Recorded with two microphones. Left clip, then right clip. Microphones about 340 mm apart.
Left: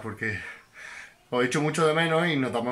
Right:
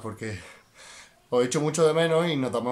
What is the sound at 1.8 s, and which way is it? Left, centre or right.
Speech, centre.